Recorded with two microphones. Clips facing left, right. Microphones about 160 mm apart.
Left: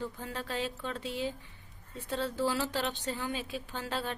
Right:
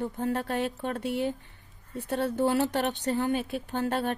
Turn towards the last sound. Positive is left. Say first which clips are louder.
# right 8 dB
turn(degrees=-55)  # may be behind; listen again after turning